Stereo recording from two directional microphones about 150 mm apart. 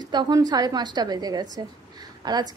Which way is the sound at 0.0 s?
30° right (ahead or behind).